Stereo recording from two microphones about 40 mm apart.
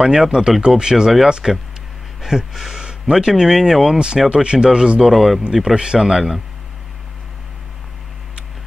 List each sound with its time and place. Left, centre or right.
0.0 s speech: centre
2.8 s a sound: centre
3.4 s speech: centre
4.3 s speech: right
5.1 s speech: centre
5.8 s speech: centre